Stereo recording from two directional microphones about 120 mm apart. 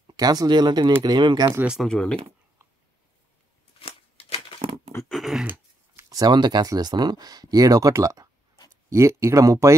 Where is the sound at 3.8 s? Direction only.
55° left (ahead or behind).